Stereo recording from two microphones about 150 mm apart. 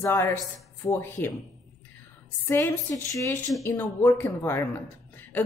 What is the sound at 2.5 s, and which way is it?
A woman's voice, 15° left (ahead or behind).